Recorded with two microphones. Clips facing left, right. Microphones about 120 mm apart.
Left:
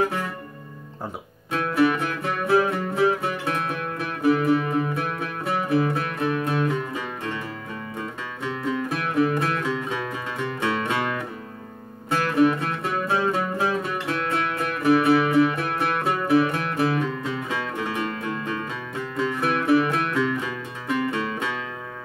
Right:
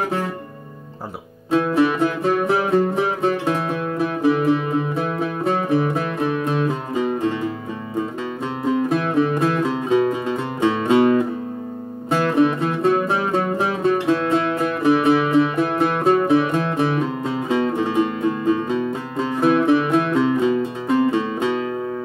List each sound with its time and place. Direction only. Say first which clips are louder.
0.0 s music: right 2 dB; 25° right (ahead or behind)
1.5 s music: right 4 dB; 25° right (ahead or behind)
8.6 s music: right 8 dB; 25° right (ahead or behind)